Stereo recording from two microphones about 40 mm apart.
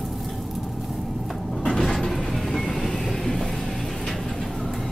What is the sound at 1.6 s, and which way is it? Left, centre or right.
Vehicle, centre.